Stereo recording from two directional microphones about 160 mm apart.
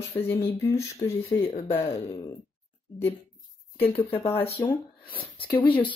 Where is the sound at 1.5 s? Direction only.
40° left (ahead or behind).